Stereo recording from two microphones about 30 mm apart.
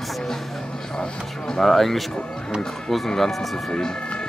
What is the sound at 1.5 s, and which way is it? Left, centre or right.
Speech, centre.